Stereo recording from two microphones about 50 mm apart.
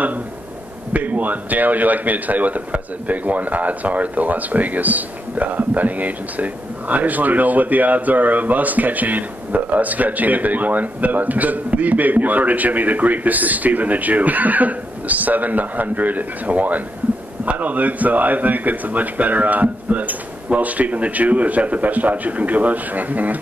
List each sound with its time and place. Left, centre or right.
0.9 s a man's voice: right